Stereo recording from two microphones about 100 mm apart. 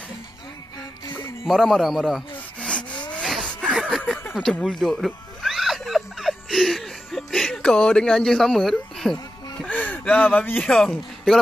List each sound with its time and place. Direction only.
1.4 s a man's voice: centre (ahead or behind)
2.3 s rub: 10° left (ahead or behind)
3.3 s a sound: 5° left (ahead or behind)
10.3 s speech: 20° left (ahead or behind)
10.7 s a man's voice: 5° left (ahead or behind)